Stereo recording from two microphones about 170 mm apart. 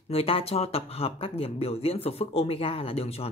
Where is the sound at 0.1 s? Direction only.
35° left (ahead or behind).